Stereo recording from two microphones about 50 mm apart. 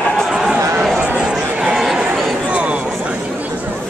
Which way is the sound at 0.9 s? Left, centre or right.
Right.